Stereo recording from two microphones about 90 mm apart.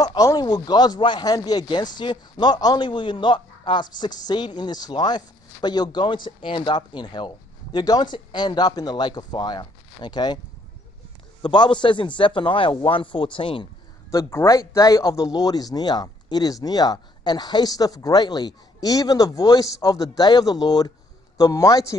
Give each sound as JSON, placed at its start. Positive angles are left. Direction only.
{"t": 0.0, "sound": "speech", "side_deg": 45}
{"t": 11.4, "sound": "a man's voice", "side_deg": 60}
{"t": 14.1, "sound": "a man's voice", "side_deg": 35}